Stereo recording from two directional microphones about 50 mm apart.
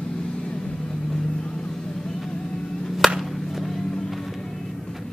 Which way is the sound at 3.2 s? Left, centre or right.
Centre.